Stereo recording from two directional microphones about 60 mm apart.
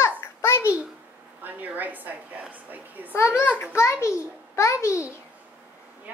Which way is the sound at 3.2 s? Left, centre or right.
Left.